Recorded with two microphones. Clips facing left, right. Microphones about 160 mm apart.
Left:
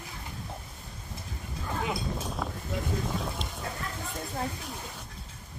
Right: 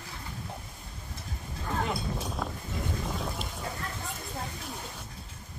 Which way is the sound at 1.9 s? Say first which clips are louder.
Even; centre (ahead or behind).